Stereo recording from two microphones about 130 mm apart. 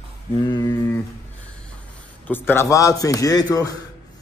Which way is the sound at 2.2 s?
15° left (ahead or behind).